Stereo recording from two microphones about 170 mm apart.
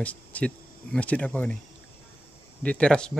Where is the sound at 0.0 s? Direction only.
10° left (ahead or behind).